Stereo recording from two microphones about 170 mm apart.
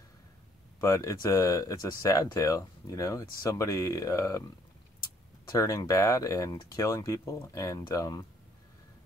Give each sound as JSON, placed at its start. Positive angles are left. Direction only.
{"t": 0.7, "sound": "speech", "side_deg": 20}
{"t": 5.5, "sound": "speech", "side_deg": 20}